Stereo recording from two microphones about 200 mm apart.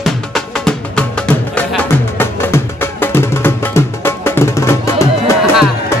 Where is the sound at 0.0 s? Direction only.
Centre (ahead or behind).